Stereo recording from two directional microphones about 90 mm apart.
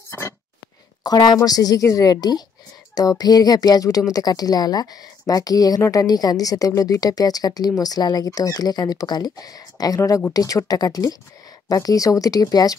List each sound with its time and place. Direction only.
1.0 s a woman's voice: 45° left (ahead or behind)